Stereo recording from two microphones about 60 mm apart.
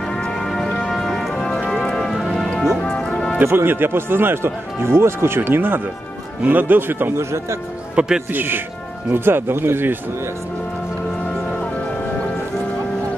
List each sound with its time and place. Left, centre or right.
0.1 s music: centre
2.8 s music: centre
3.4 s speech: right
7.2 s speech: right
7.9 s speech: centre
8.3 s speech: right